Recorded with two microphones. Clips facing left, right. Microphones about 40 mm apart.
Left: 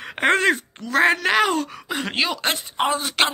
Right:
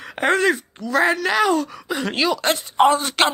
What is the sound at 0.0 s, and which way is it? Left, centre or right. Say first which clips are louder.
Speech: even; left.